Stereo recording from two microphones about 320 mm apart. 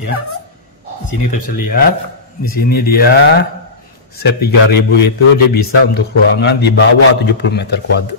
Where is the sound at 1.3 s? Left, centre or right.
Left.